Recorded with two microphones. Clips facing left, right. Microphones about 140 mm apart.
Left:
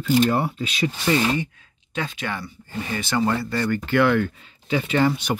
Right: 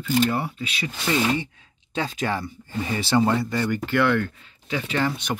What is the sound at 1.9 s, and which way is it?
Speech, 35° right (ahead or behind).